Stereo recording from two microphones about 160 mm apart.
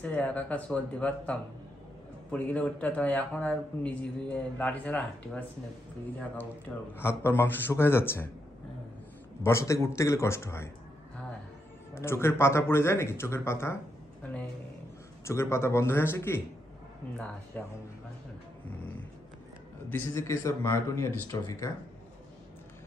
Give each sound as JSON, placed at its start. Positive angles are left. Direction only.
{"t": 0.0, "sound": "a man's voice", "side_deg": 10}
{"t": 7.0, "sound": "a man's voice", "side_deg": 15}
{"t": 9.4, "sound": "a man's voice", "side_deg": 15}
{"t": 11.9, "sound": "a man's voice", "side_deg": 15}
{"t": 15.2, "sound": "a man's voice", "side_deg": 15}
{"t": 17.6, "sound": "a man's voice", "side_deg": 10}
{"t": 19.9, "sound": "a man's voice", "side_deg": 15}